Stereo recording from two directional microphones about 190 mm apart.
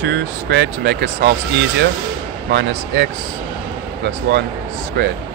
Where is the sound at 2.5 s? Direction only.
65° right (ahead or behind).